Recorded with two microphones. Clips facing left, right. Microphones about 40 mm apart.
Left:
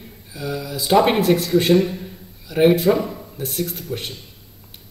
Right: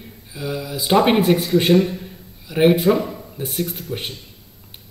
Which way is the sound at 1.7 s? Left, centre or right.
Centre.